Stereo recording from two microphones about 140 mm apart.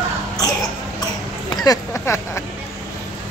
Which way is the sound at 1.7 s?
20° left (ahead or behind).